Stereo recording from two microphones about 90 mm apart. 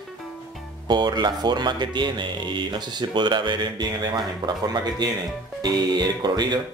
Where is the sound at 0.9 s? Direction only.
50° right (ahead or behind).